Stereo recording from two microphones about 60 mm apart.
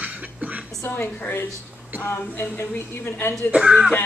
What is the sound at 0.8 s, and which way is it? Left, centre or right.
Speech, left.